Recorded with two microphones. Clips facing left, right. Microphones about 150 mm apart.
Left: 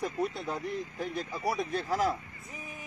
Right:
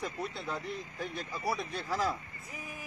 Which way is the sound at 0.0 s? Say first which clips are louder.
Left 5 dB; 40° left (ahead or behind).